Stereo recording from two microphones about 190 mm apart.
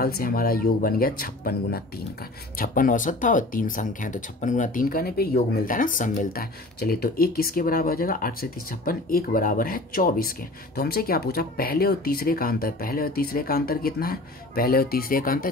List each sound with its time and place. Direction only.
0.0 s speech: 50° left (ahead or behind)